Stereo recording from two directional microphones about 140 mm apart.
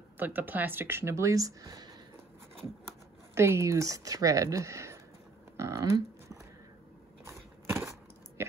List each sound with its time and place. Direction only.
0.2 s speech: 15° right (ahead or behind); by 2.0 s 30° right (ahead or behind)
3.3 s speech: 20° right (ahead or behind)
5.6 s a sound: 25° right (ahead or behind)